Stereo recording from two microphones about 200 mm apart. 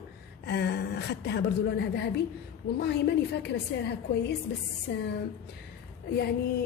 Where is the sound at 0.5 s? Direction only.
55° left (ahead or behind).